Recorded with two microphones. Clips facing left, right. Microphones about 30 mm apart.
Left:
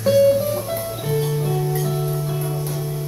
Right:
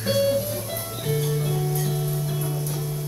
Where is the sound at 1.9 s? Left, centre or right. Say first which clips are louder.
Left 4 dB; centre.